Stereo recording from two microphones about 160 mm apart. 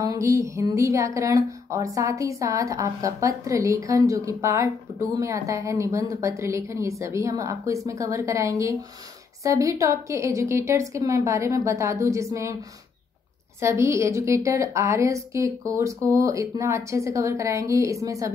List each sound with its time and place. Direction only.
0.0 s speech: 20° right (ahead or behind)
13.6 s speech: 15° right (ahead or behind)